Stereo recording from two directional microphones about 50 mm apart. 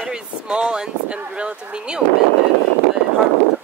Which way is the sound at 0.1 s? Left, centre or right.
Centre.